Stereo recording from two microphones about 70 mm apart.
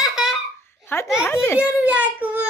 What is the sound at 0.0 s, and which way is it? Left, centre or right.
Laughter, centre.